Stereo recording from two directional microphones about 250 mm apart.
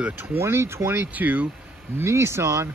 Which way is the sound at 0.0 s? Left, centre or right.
Centre.